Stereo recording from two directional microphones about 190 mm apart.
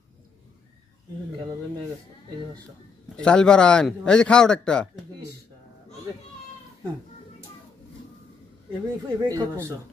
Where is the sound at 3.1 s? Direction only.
5° left (ahead or behind).